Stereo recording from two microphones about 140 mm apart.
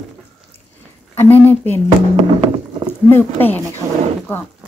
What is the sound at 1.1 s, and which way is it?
Speech, 15° left (ahead or behind).